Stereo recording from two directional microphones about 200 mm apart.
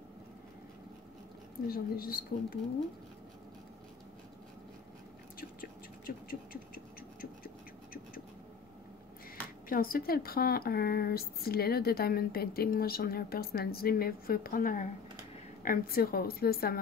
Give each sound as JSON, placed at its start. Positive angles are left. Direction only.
{"t": 1.7, "sound": "speech", "side_deg": 45}
{"t": 5.4, "sound": "a sound", "side_deg": 45}
{"t": 9.7, "sound": "speech", "side_deg": 45}